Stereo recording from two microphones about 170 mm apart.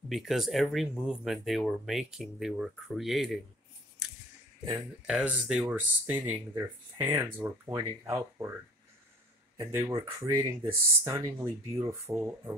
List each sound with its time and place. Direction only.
0.1 s speech: centre (ahead or behind)
4.7 s speech: 5° right (ahead or behind)
9.6 s speech: 15° right (ahead or behind)